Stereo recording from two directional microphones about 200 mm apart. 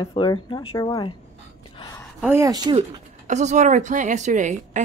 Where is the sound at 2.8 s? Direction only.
35° right (ahead or behind).